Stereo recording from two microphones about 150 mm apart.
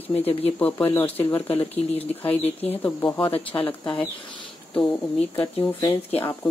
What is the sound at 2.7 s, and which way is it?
Speech, 15° left (ahead or behind).